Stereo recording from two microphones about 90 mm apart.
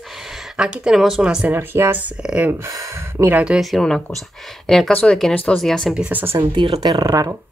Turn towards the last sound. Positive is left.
turn(degrees=-45)  # may be behind; listen again after turning